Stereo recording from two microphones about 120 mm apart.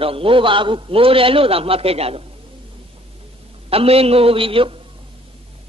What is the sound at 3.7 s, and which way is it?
A man's voice, 55° right (ahead or behind).